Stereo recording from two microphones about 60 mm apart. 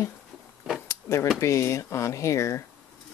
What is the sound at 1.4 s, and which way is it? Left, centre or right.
Speech, left.